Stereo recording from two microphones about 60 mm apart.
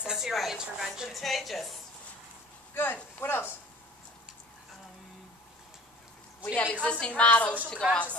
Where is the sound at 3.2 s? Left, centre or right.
Left.